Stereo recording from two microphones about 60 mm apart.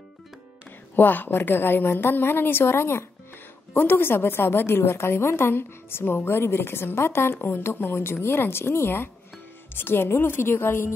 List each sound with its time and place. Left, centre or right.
0.9 s a woman's voice: left